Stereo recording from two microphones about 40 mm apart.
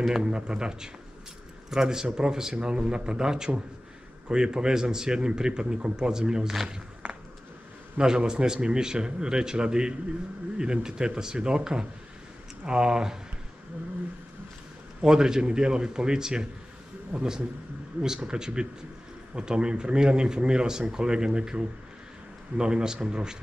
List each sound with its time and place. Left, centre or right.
0.2 s a man's voice: right
6.4 s speech: centre
8.0 s speech: centre
15.0 s a man's voice: centre